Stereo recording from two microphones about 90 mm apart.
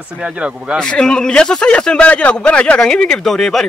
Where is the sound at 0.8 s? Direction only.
10° left (ahead or behind).